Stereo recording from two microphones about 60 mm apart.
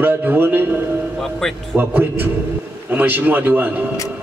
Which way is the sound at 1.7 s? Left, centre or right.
Right.